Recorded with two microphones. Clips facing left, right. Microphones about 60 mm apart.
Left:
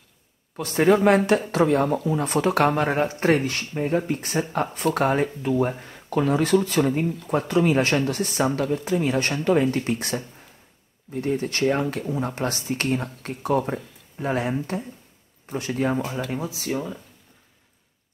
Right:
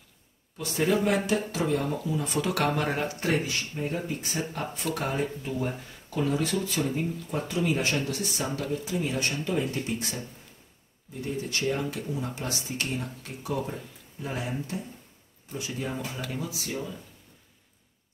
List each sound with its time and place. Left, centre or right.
0.6 s speech: left
16.2 s speech: left